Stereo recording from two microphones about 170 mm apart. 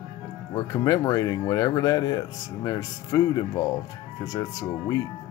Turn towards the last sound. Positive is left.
turn(degrees=20)  # may be behind; listen again after turning